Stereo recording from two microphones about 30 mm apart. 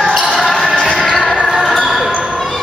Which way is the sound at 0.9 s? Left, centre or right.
Left.